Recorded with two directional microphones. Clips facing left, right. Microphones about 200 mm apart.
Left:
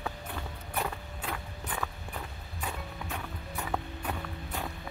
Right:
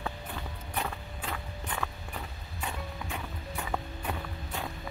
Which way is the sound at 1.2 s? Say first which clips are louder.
Even; 5° left (ahead or behind).